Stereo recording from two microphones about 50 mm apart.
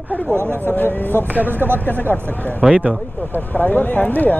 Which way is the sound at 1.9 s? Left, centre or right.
Left.